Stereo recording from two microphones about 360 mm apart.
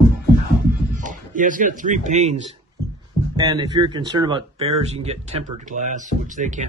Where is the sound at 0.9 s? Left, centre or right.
Right.